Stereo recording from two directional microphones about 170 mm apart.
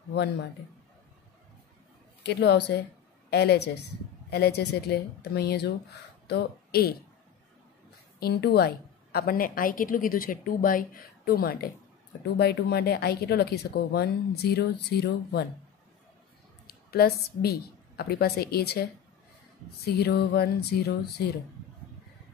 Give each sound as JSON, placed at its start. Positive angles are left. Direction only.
{"t": 2.2, "sound": "speech", "side_deg": 75}
{"t": 8.2, "sound": "a woman's voice", "side_deg": 75}
{"t": 16.6, "sound": "a woman's voice", "side_deg": 65}
{"t": 19.9, "sound": "speech", "side_deg": 75}